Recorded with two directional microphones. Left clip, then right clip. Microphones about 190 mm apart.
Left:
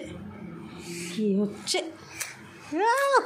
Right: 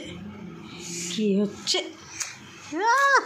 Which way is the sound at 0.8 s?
60° left (ahead or behind).